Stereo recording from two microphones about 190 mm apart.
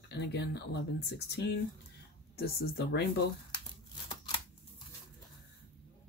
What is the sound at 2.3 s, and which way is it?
Speech, 55° left (ahead or behind).